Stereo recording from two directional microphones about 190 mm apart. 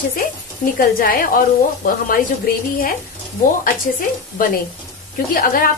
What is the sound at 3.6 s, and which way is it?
A woman's voice, 45° left (ahead or behind).